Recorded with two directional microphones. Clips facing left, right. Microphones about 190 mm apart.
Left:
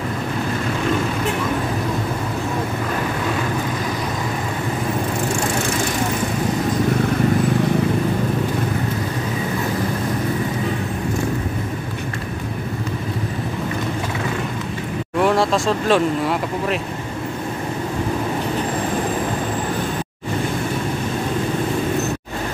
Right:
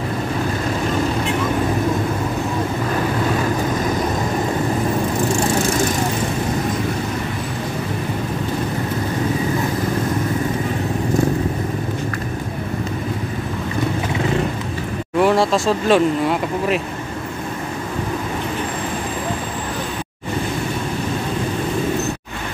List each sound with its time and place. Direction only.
15.1 s speech: centre (ahead or behind)